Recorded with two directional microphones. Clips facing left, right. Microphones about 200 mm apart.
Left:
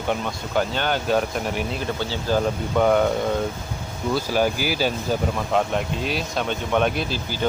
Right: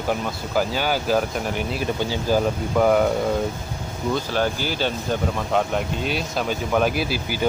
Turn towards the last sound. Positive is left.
turn(degrees=-10)  # may be behind; listen again after turning